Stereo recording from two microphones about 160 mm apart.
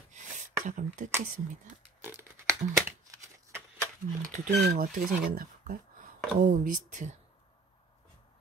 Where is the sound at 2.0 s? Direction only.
15° right (ahead or behind).